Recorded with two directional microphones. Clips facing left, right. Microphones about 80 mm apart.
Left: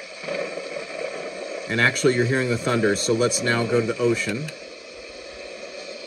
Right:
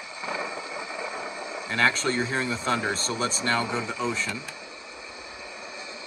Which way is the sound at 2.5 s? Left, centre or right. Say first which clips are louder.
Left 6 dB; right.